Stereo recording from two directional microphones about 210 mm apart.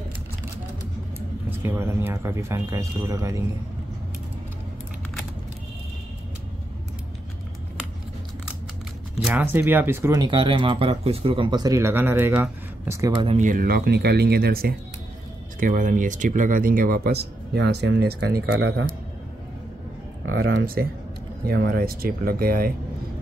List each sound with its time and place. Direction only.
1.6 s speech: 10° right (ahead or behind)
9.2 s speech: 10° right (ahead or behind)
13.1 s speech: 25° right (ahead or behind)
13.4 s speech: 40° right (ahead or behind)
18.5 s a man's voice: 75° right (ahead or behind)
20.3 s speech: 50° right (ahead or behind)